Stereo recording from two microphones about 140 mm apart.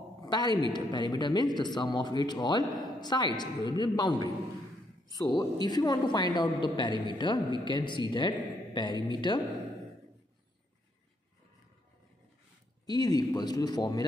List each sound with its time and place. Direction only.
0.2 s a man's voice: 30° left (ahead or behind)
12.8 s a woman's voice: 30° left (ahead or behind)